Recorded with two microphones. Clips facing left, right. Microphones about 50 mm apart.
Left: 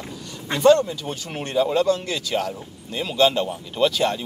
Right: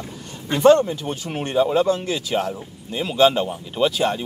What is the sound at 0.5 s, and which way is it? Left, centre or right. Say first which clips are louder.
Speech: right 2 dB; right.